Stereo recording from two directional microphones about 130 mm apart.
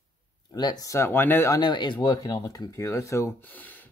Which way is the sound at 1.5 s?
35° left (ahead or behind).